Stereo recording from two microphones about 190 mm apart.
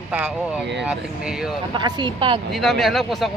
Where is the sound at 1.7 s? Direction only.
25° right (ahead or behind).